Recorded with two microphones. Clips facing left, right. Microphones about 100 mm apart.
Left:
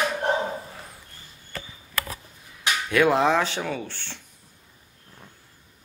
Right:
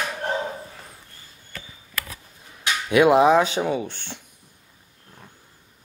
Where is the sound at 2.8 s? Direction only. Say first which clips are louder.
Right 5 dB; 15° right (ahead or behind).